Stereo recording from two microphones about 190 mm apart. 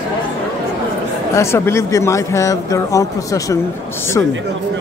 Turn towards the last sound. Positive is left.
turn(degrees=15)  # may be behind; listen again after turning